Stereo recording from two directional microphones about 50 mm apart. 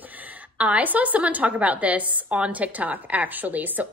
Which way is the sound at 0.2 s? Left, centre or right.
Right.